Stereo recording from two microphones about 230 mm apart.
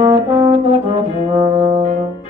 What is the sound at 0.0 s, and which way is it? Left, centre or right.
Brass instrument, right.